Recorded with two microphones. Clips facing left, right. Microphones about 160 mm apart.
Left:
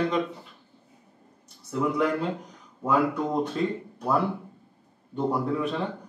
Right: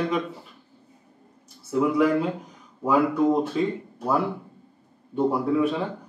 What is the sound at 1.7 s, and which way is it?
Speech, 5° right (ahead or behind).